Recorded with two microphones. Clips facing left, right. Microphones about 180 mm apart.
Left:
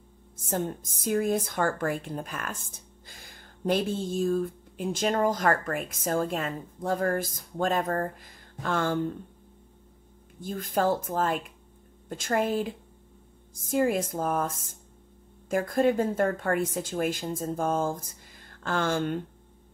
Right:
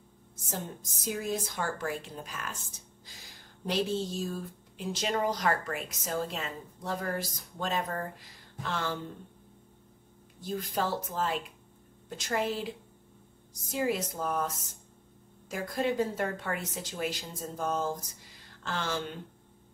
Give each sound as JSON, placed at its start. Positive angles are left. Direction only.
{"t": 0.4, "sound": "a woman's voice", "side_deg": 55}
{"t": 10.4, "sound": "a woman's voice", "side_deg": 50}